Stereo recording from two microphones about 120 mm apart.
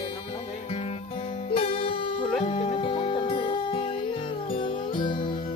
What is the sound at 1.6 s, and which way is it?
Music, 50° left (ahead or behind).